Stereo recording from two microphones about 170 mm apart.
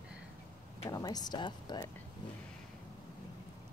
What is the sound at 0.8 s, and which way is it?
Speech, 20° left (ahead or behind).